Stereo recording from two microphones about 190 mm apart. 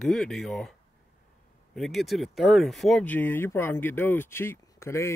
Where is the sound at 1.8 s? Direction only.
Centre (ahead or behind).